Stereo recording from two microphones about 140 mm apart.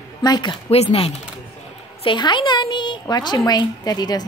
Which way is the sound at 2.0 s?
35° left (ahead or behind).